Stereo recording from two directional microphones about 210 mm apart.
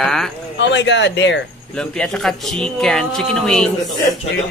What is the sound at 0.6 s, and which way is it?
Speech, 55° left (ahead or behind).